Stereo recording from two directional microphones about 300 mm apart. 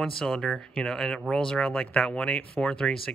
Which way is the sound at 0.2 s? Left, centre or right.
Centre.